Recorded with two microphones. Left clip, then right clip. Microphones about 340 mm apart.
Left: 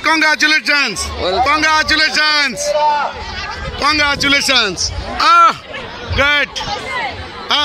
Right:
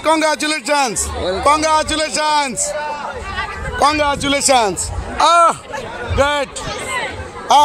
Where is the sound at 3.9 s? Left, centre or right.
Centre.